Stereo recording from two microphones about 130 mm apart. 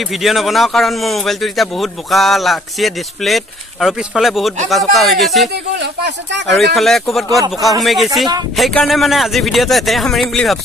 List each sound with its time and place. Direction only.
0.1 s a man's voice: centre (ahead or behind)
6.5 s a man's voice: centre (ahead or behind)
7.2 s speech: 30° right (ahead or behind)
7.8 s a man's voice: centre (ahead or behind)